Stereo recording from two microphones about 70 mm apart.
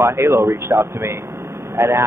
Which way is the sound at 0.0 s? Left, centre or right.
Right.